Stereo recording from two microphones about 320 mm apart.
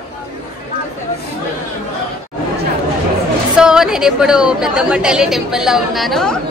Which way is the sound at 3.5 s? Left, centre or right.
Centre.